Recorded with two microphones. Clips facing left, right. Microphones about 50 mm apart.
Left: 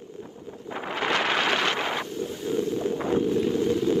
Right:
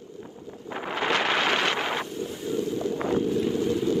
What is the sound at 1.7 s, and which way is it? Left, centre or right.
Wind noise, right.